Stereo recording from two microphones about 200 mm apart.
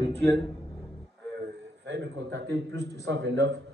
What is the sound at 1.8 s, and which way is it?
A man's voice, 60° right (ahead or behind).